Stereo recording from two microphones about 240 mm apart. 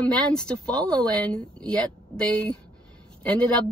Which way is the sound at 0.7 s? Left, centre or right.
Centre.